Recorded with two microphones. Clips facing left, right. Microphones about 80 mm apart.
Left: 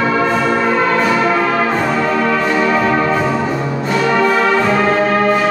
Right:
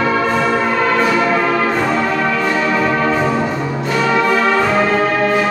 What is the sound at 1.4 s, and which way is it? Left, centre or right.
Brass instrument, centre.